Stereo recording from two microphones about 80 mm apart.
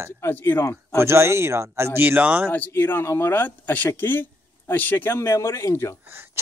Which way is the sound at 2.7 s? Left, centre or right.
Left.